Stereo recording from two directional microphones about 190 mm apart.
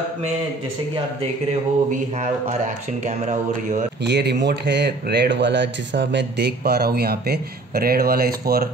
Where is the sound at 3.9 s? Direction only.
65° right (ahead or behind).